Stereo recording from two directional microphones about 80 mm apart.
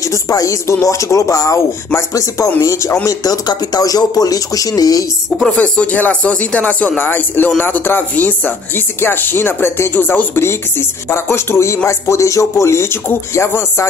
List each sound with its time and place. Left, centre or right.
0.0 s speech: left
3.1 s speech: left
5.6 s speech: centre